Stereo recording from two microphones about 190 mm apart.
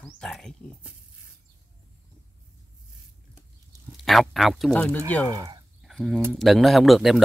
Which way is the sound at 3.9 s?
Centre (ahead or behind).